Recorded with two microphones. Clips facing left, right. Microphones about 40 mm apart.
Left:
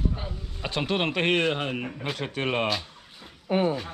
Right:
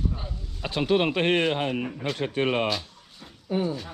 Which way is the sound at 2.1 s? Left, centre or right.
Centre.